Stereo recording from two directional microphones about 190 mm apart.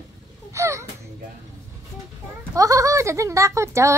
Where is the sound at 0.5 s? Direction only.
15° right (ahead or behind).